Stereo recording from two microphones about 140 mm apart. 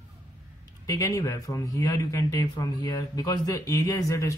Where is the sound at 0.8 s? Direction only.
25° left (ahead or behind).